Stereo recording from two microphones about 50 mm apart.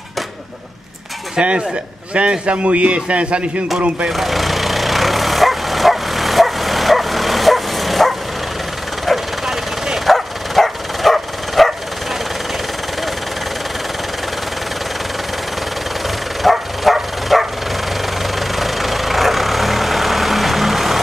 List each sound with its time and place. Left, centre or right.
1.3 s a man's voice: right
4.1 s bow-wow: centre
9.0 s vehicle: centre
10.0 s bow-wow: centre
16.4 s dog: centre
18.2 s vehicle: centre